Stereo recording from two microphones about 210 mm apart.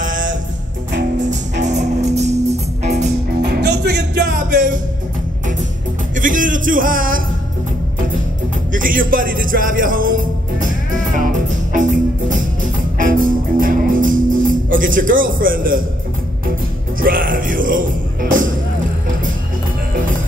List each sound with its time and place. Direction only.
0.0 s music: 40° right (ahead or behind)
1.6 s music: 35° right (ahead or behind)
3.4 s music: 55° right (ahead or behind)
4.3 s music: 40° right (ahead or behind)
6.1 s music: 40° right (ahead or behind)
8.7 s music: 40° right (ahead or behind)
17.0 s music: 40° right (ahead or behind)